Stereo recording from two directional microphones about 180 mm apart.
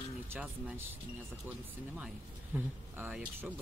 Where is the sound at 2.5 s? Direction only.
10° right (ahead or behind).